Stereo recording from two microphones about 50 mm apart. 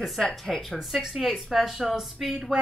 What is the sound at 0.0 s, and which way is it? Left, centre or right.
Speech, centre.